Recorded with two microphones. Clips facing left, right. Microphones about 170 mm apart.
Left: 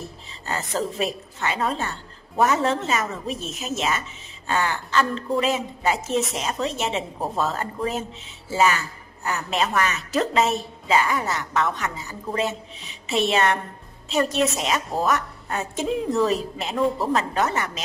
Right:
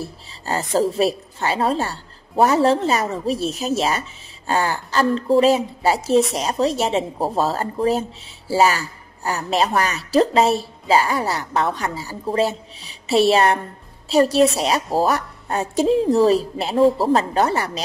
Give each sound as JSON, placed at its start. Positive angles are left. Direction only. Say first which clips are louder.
{"t": 0.0, "sound": "a woman's voice", "louder": "right 5 dB", "side_deg": -35}